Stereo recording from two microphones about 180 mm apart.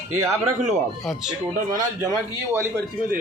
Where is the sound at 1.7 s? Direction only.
15° right (ahead or behind).